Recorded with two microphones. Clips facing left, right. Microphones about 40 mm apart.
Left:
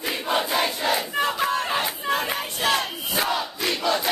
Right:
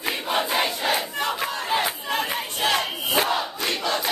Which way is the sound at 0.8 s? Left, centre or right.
Right.